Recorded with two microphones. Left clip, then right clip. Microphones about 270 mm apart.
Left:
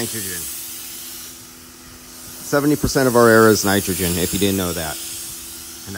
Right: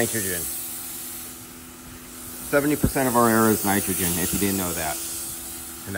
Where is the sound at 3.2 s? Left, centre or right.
Right.